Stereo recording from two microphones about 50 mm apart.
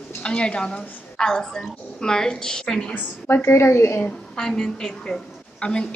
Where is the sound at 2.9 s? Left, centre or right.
Left.